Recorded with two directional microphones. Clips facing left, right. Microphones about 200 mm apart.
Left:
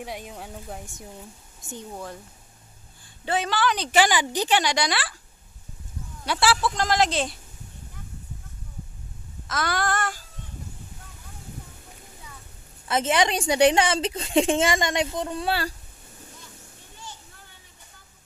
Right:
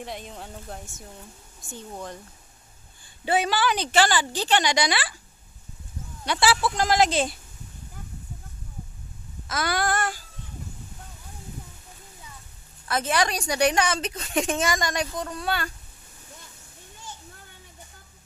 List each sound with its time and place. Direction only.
0.0 s speech: 10° left (ahead or behind)
1.9 s speech: 5° left (ahead or behind)
3.3 s a woman's voice: 10° right (ahead or behind)
3.9 s speech: 15° left (ahead or behind)
4.6 s speech: centre (ahead or behind)
6.2 s speech: centre (ahead or behind)
9.5 s speech: 5° right (ahead or behind)
12.8 s speech: 25° left (ahead or behind)